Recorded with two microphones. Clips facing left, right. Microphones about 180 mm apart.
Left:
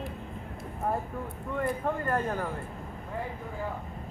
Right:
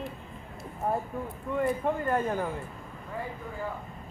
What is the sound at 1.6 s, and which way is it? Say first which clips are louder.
Speech: right 2 dB; 10° right (ahead or behind).